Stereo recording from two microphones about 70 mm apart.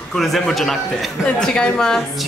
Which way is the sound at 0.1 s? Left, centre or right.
Centre.